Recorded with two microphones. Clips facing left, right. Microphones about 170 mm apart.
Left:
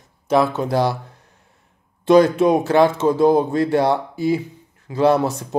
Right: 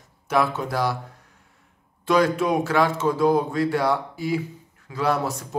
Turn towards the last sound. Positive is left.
turn(degrees=25)  # may be behind; listen again after turning